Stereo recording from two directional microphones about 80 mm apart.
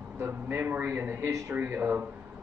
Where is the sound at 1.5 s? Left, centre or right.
Right.